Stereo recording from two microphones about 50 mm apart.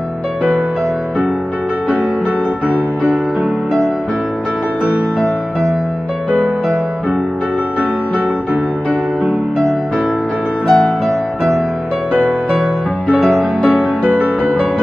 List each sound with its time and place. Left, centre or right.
5.2 s music: centre
10.7 s music: centre
12.1 s music: right
13.2 s music: centre
14.0 s music: right